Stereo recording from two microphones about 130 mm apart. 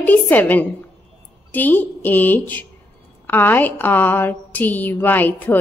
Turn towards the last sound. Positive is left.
turn(degrees=15)  # may be behind; listen again after turning